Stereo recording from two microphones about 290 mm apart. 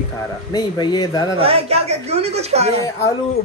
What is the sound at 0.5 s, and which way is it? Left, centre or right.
Speech, centre.